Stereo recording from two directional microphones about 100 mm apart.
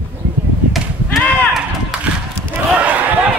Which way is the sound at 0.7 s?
Centre (ahead or behind).